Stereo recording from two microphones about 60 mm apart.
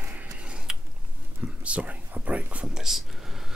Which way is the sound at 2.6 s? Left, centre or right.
Centre.